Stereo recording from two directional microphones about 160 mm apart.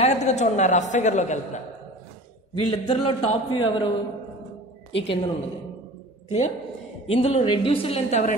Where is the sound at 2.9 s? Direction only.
35° left (ahead or behind).